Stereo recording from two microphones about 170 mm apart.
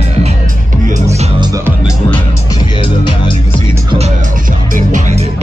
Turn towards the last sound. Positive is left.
turn(degrees=-50)  # may be behind; listen again after turning